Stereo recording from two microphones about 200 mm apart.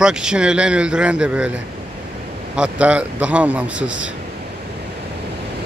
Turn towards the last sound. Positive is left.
turn(degrees=-5)  # may be behind; listen again after turning